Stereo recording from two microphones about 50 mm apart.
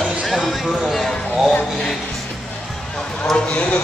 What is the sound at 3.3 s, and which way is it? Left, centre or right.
Speech, left.